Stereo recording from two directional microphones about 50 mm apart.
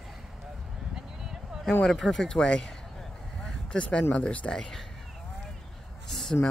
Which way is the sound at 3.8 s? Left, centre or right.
Left.